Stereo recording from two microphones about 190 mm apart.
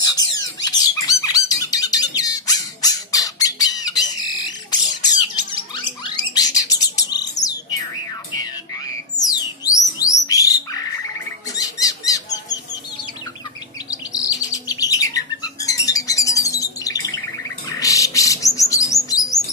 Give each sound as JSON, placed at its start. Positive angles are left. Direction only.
{"t": 0.7, "sound": "bird", "side_deg": 20}
{"t": 9.3, "sound": "music", "side_deg": 20}
{"t": 10.2, "sound": "bird", "side_deg": 20}
{"t": 11.5, "sound": "rodents", "side_deg": 20}
{"t": 13.8, "sound": "bird", "side_deg": 20}
{"t": 18.9, "sound": "chirp", "side_deg": 15}